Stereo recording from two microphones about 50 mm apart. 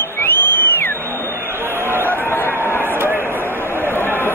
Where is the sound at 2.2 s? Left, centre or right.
Left.